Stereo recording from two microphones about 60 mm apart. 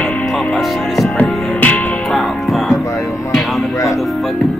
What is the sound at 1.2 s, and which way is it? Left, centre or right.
Music, left.